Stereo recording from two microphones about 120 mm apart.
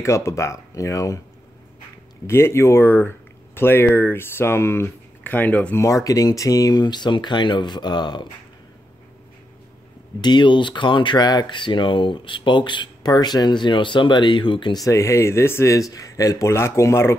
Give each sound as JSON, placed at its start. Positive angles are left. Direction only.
{"t": 0.0, "sound": "speech", "side_deg": 25}
{"t": 2.2, "sound": "speech", "side_deg": 20}
{"t": 5.8, "sound": "speech", "side_deg": 25}
{"t": 10.2, "sound": "speech", "side_deg": 40}
{"t": 14.9, "sound": "speech", "side_deg": 25}